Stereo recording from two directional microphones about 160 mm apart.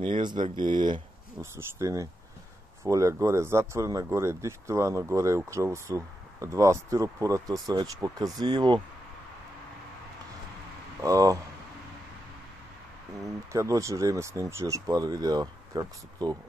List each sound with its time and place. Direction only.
0.0 s speech: 30° right (ahead or behind)
1.4 s speech: 15° right (ahead or behind)
11.0 s speech: 20° right (ahead or behind)
13.5 s speech: 20° right (ahead or behind)